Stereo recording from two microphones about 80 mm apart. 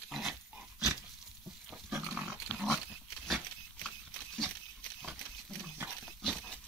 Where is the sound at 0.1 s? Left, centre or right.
Centre.